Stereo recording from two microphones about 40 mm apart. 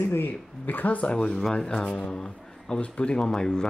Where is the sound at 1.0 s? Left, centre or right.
Left.